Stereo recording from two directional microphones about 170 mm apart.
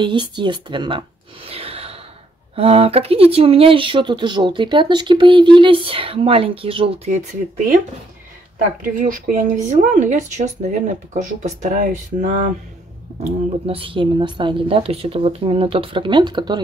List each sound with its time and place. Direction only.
0.0 s speech: 30° right (ahead or behind)
7.2 s speech: 50° right (ahead or behind)
8.8 s speech: 50° right (ahead or behind)
13.7 s speech: 30° right (ahead or behind)